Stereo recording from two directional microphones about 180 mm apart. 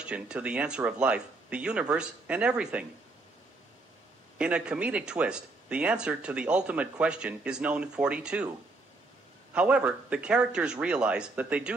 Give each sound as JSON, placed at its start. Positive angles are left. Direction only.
{"t": 0.0, "sound": "speech", "side_deg": -5}
{"t": 4.4, "sound": "speech", "side_deg": -5}